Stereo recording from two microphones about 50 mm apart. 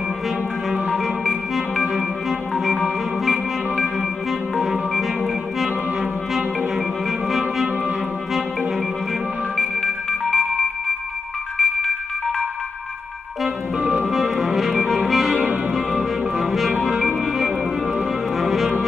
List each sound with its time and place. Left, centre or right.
0.7 s music: centre
2.5 s music: centre
7.1 s clarinet: centre
9.6 s music: centre
11.5 s music: centre
13.7 s music: right
14.0 s music: centre
14.9 s organ: centre
16.3 s music: centre
18.4 s music: centre